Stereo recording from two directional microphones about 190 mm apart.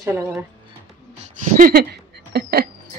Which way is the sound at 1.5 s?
50° right (ahead or behind).